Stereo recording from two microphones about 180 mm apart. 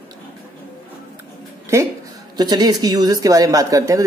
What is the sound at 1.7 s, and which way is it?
Speech, 15° right (ahead or behind).